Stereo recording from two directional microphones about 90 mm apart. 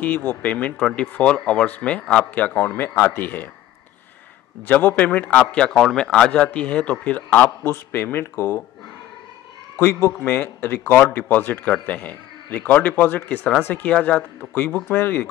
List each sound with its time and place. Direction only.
0.0 s speech: 20° left (ahead or behind)
4.6 s a man's voice: 20° left (ahead or behind)
9.8 s a man's voice: 30° left (ahead or behind)